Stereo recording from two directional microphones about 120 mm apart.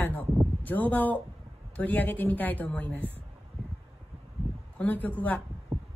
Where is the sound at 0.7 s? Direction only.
15° left (ahead or behind).